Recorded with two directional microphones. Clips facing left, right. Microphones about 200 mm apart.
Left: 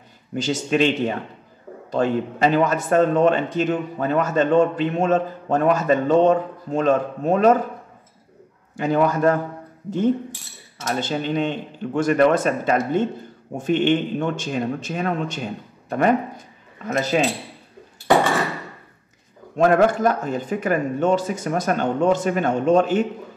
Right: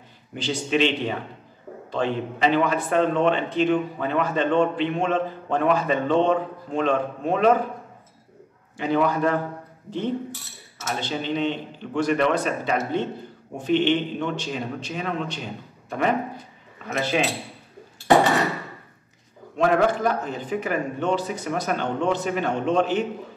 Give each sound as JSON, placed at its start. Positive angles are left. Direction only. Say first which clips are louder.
{"t": 0.4, "sound": "a man's voice", "louder": "left 3 dB", "side_deg": 45}
{"t": 8.7, "sound": "a man's voice", "louder": "left 2 dB", "side_deg": 45}
{"t": 19.5, "sound": "a man's voice", "louder": "left 4 dB", "side_deg": 45}